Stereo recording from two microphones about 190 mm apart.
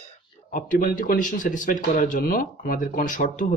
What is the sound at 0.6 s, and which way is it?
Speech, 45° left (ahead or behind).